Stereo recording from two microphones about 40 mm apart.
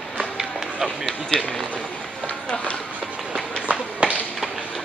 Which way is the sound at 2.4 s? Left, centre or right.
Left.